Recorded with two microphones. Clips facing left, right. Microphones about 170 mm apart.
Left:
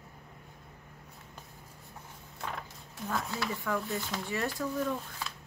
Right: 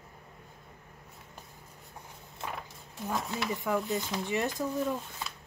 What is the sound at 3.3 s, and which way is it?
Speech, 20° right (ahead or behind).